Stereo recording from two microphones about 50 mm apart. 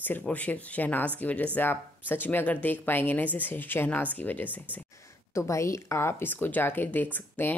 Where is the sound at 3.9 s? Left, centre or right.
Left.